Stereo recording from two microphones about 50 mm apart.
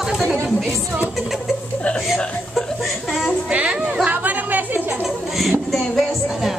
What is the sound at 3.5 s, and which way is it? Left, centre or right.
Speech, right.